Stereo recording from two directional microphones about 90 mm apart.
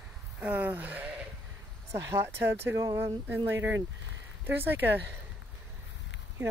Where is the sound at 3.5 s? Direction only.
25° right (ahead or behind).